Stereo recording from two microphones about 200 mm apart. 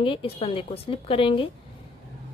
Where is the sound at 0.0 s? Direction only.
25° left (ahead or behind).